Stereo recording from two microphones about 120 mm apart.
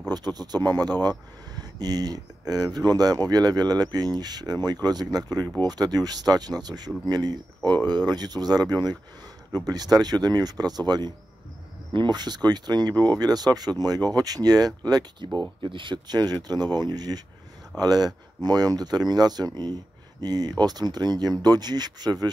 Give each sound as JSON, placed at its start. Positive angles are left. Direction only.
{"t": 0.1, "sound": "speech", "side_deg": -35}